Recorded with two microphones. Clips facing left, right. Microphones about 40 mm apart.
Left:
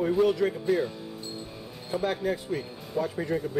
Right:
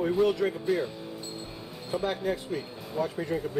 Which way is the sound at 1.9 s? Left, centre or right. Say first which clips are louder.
Left 1 dB; centre.